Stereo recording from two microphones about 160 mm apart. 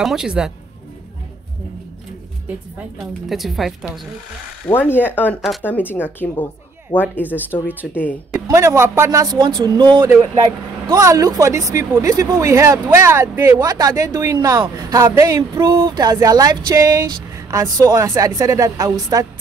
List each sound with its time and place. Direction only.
0.0 s speech: 5° right (ahead or behind)
3.3 s speech: centre (ahead or behind)
4.6 s a woman's voice: 10° left (ahead or behind)
8.3 s speech: 20° right (ahead or behind)